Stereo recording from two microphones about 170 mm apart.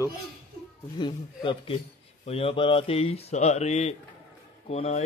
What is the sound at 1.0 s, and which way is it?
Speech, 30° left (ahead or behind).